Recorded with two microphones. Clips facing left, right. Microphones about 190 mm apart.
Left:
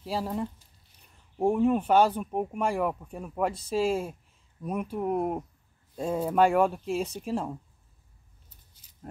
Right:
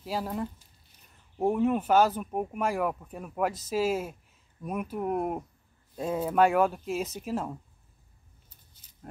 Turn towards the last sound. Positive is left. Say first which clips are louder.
# left 1 dB
turn(degrees=-5)  # may be behind; listen again after turning